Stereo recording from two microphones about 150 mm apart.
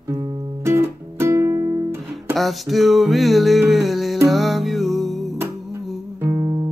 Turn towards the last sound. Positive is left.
turn(degrees=-25)  # may be behind; listen again after turning